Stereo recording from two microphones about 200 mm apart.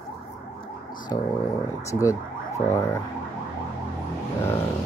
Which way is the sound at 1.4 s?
15° left (ahead or behind).